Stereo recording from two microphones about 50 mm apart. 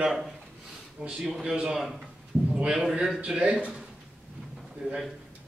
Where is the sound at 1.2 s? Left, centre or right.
Centre.